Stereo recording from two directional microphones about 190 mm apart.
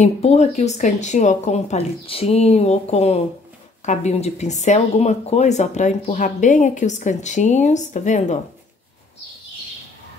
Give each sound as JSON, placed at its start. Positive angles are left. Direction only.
{"t": 0.0, "sound": "speech", "side_deg": 35}